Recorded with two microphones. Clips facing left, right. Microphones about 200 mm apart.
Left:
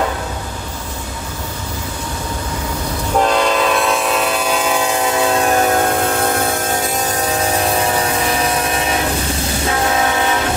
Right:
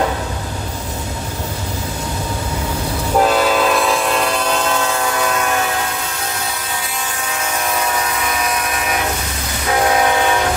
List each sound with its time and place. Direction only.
3.2 s train: 5° right (ahead or behind); by 8.9 s 30° left (ahead or behind)